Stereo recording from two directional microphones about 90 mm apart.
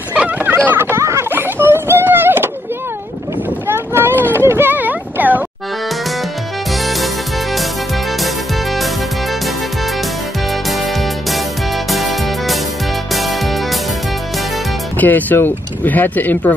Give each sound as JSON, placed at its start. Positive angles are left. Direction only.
{"t": 0.1, "sound": "a sound", "side_deg": -15}
{"t": 3.6, "sound": "boat", "side_deg": -25}
{"t": 4.3, "sound": "a sound", "side_deg": -25}
{"t": 6.7, "sound": "music", "side_deg": 0}
{"t": 10.5, "sound": "music", "side_deg": 0}
{"t": 15.0, "sound": "speech", "side_deg": 20}